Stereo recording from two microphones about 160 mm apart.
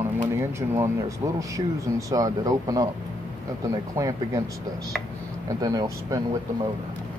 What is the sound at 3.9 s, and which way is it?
Speech, 20° right (ahead or behind).